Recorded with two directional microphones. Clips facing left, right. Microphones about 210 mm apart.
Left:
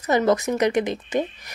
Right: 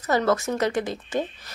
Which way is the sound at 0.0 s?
15° left (ahead or behind).